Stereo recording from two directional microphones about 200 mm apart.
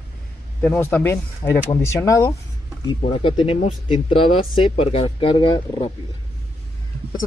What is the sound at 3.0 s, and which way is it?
Speech, 25° left (ahead or behind).